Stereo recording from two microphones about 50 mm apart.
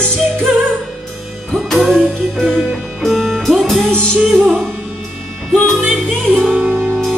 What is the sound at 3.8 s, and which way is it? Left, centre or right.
Music, centre.